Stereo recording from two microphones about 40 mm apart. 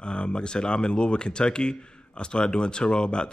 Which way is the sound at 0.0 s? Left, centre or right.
Left.